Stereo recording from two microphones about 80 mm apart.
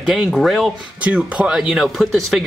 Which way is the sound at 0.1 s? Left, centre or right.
Centre.